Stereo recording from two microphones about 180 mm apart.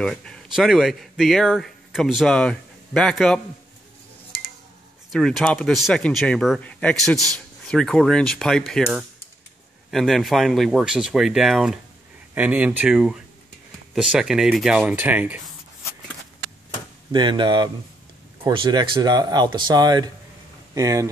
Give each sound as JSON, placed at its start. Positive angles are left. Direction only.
{"t": 0.0, "sound": "speech", "side_deg": 5}
{"t": 5.1, "sound": "speech", "side_deg": 0}
{"t": 17.1, "sound": "speech", "side_deg": -25}